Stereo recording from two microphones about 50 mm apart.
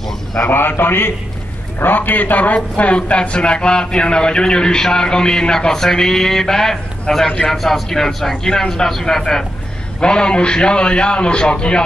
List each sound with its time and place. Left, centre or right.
0.5 s a man's voice: left; by 11.8 s centre